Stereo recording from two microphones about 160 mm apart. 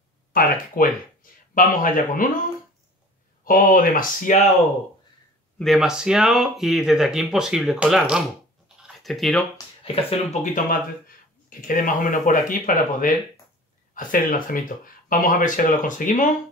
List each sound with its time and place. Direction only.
0.3 s speech: 60° left (ahead or behind)
3.4 s speech: 60° left (ahead or behind)
5.6 s speech: centre (ahead or behind)
8.8 s a sound: centre (ahead or behind)
9.8 s speech: 45° left (ahead or behind)